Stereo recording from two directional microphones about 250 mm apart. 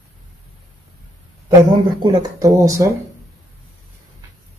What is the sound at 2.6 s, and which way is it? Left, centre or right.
Speech, centre.